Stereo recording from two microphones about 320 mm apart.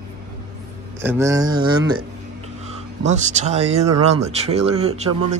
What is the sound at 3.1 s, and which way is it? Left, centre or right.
Speech, right.